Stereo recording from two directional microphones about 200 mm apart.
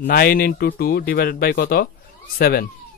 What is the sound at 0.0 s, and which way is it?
Speech, 50° left (ahead or behind).